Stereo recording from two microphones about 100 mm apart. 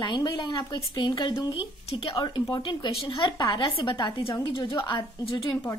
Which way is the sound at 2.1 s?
40° left (ahead or behind).